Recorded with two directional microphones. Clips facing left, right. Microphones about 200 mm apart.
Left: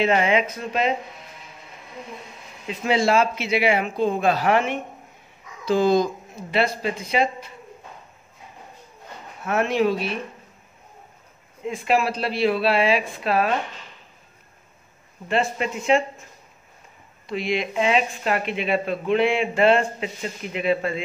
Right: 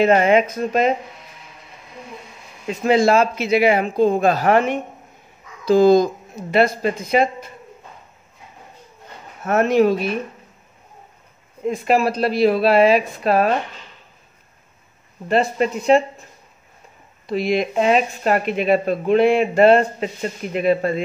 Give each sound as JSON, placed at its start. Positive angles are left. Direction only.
{"t": 0.0, "sound": "a man's voice", "side_deg": -45}
{"t": 2.7, "sound": "a man's voice", "side_deg": -45}
{"t": 9.4, "sound": "a man's voice", "side_deg": -45}
{"t": 11.6, "sound": "a man's voice", "side_deg": -40}
{"t": 15.2, "sound": "speech", "side_deg": -40}
{"t": 17.3, "sound": "speech", "side_deg": -40}